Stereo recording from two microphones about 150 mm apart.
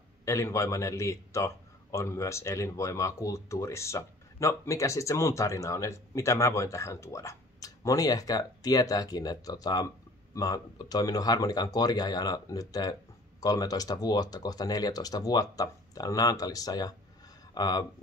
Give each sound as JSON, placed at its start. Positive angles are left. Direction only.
{"t": 0.2, "sound": "a man's voice", "side_deg": 20}